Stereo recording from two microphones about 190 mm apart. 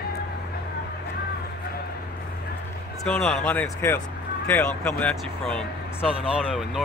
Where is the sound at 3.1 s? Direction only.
5° left (ahead or behind).